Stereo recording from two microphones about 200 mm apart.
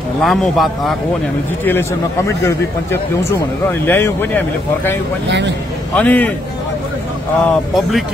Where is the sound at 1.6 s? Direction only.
10° left (ahead or behind).